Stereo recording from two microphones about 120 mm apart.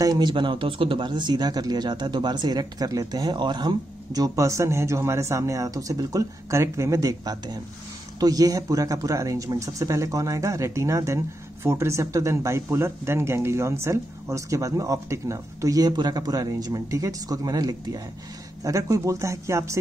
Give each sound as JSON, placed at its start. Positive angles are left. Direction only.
{"t": 0.0, "sound": "speech", "side_deg": -35}